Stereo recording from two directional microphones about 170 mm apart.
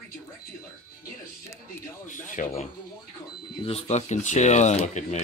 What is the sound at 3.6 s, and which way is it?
Speech, 40° left (ahead or behind).